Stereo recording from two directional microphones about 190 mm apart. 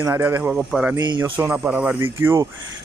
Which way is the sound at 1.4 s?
5° right (ahead or behind).